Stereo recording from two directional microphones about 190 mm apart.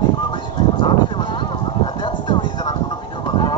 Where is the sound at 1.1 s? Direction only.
25° left (ahead or behind).